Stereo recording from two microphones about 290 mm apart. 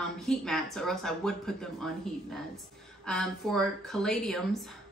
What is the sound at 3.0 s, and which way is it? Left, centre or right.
A woman's voice, centre.